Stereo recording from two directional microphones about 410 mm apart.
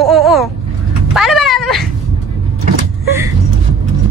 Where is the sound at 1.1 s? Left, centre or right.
Centre.